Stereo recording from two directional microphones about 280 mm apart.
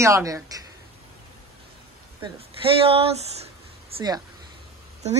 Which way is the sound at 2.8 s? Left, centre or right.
Right.